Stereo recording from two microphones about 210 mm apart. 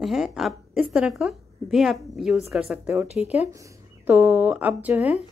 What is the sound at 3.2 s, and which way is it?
Speech, 30° left (ahead or behind).